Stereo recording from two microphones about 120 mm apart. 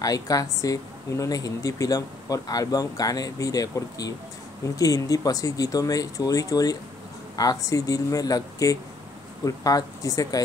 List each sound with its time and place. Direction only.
0.0 s speech: 30° left (ahead or behind)